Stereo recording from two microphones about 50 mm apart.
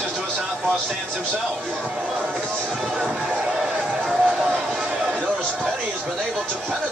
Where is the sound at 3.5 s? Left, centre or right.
Centre.